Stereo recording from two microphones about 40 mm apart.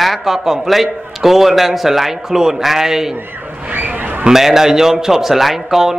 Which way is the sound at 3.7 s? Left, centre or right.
Right.